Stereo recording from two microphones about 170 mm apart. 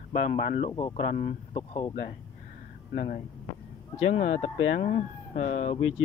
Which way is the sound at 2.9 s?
60° left (ahead or behind).